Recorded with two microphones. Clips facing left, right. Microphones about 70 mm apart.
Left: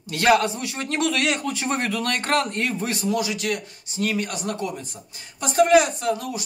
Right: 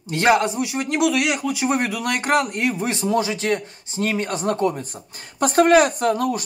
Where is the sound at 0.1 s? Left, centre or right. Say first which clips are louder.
Right 1 dB; right.